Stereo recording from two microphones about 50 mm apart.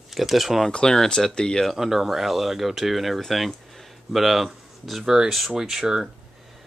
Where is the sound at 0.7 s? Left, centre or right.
Centre.